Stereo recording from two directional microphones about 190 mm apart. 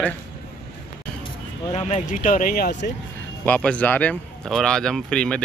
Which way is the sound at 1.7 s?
35° left (ahead or behind).